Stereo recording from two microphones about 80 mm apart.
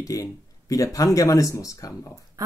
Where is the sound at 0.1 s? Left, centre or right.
Left.